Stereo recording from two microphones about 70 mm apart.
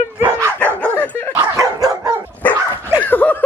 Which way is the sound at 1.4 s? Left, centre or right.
Right.